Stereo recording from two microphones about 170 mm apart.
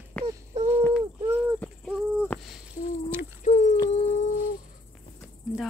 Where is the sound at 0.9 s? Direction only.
10° right (ahead or behind).